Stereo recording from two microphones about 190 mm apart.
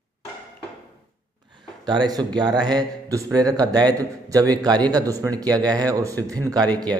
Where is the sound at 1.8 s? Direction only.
20° right (ahead or behind).